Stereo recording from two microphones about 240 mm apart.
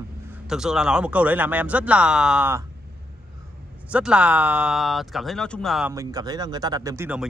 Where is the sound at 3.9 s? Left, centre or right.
Centre.